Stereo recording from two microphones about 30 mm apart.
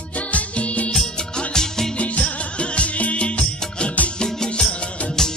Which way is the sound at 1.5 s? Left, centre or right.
Centre.